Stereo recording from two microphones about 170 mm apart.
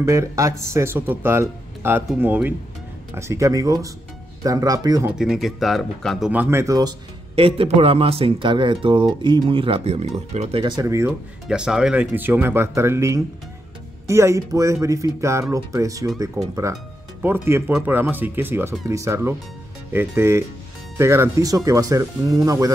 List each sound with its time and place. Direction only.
0.0 s speech: 15° right (ahead or behind)
5.1 s speech: 5° right (ahead or behind)
6.5 s a man's voice: 20° right (ahead or behind); by 10.6 s 40° right (ahead or behind)
10.6 s speech: 20° right (ahead or behind)
11.4 s speech: 5° right (ahead or behind); by 22.7 s 20° right (ahead or behind)